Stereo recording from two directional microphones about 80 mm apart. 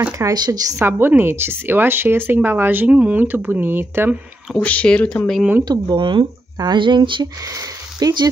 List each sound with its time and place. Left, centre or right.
0.3 s speech: right
0.8 s speech: right
4.6 s speech: centre
5.7 s speech: right
8.0 s speech: right